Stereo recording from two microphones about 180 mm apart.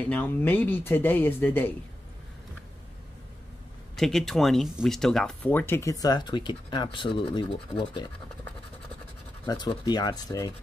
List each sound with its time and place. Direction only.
0.1 s speech: 10° left (ahead or behind)
3.9 s speech: centre (ahead or behind); by 8.1 s 25° left (ahead or behind)
9.5 s speech: 25° left (ahead or behind)